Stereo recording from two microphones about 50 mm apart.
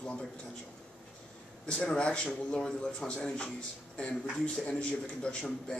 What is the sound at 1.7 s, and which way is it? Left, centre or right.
A man's voice, centre.